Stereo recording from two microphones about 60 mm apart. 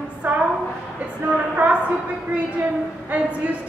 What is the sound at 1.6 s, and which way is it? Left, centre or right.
Speech, right.